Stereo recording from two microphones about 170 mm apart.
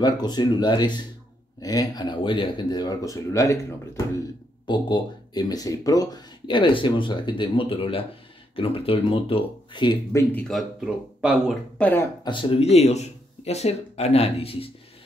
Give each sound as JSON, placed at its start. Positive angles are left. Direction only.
{"t": 0.0, "sound": "speech", "side_deg": 25}
{"t": 10.1, "sound": "speech", "side_deg": 5}
{"t": 12.2, "sound": "speech", "side_deg": 30}